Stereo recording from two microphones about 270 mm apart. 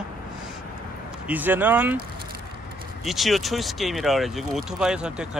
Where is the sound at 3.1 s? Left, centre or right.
Centre.